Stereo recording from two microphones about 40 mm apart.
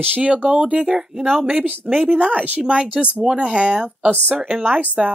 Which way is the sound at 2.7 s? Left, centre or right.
Right.